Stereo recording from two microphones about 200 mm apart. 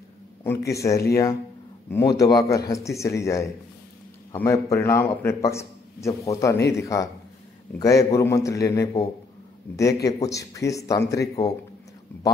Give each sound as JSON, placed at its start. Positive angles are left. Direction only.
{"t": 0.4, "sound": "a man's voice", "side_deg": 10}
{"t": 10.0, "sound": "a man's voice", "side_deg": 15}